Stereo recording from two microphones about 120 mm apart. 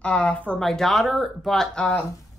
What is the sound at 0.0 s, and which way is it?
Speech, 10° left (ahead or behind).